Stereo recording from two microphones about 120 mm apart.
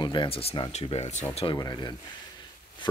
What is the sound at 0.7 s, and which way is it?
Speech, 65° left (ahead or behind).